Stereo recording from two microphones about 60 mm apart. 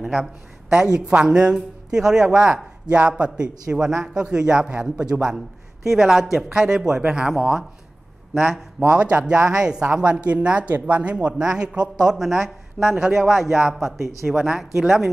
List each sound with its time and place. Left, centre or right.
0.0 s a woman's voice: centre
8.8 s speech: centre